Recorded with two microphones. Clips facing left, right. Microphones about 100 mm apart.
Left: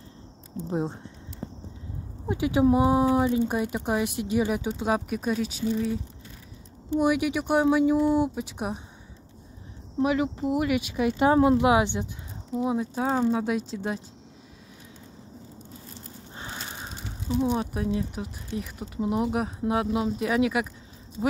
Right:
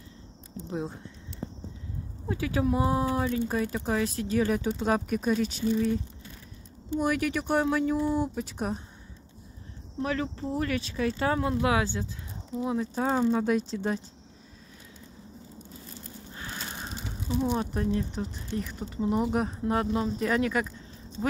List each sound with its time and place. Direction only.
0.7 s speech: 30° left (ahead or behind)
2.2 s speech: 20° left (ahead or behind); by 5.9 s 5° left (ahead or behind)
7.0 s speech: 10° left (ahead or behind)
10.0 s speech: 15° left (ahead or behind)
16.7 s speech: 5° left (ahead or behind)